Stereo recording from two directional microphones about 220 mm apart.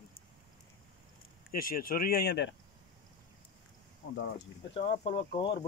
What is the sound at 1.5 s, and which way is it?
Speech, 40° left (ahead or behind).